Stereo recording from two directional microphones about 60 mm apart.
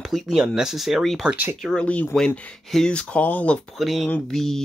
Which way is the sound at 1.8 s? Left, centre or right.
Left.